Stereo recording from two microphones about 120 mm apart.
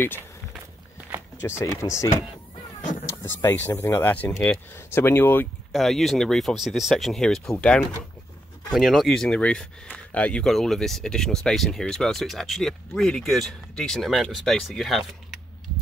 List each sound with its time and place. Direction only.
1.4 s speech: 25° left (ahead or behind)
2.8 s a sound: 90° left
3.2 s speech: 20° left (ahead or behind)
5.7 s speech: centre (ahead or behind)